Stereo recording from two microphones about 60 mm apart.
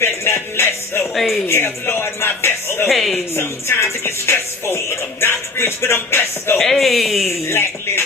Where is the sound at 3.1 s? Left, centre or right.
Left.